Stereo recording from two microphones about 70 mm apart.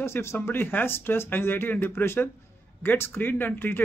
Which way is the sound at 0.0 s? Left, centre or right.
Left.